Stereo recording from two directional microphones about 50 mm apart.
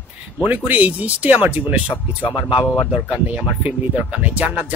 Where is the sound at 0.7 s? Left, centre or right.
Right.